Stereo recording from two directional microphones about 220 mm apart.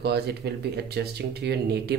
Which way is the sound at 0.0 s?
50° right (ahead or behind).